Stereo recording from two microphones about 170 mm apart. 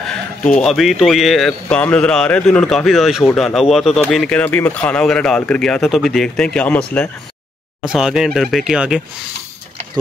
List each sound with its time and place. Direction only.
0.6 s speech: centre (ahead or behind)
7.8 s speech: 5° right (ahead or behind)